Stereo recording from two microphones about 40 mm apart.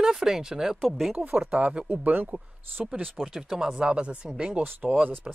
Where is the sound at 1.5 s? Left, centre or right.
Right.